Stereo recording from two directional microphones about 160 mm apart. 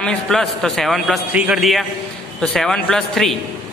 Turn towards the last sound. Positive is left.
turn(degrees=5)  # may be behind; listen again after turning